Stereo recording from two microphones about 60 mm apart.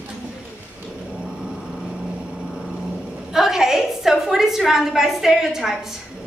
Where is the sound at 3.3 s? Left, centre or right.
Centre.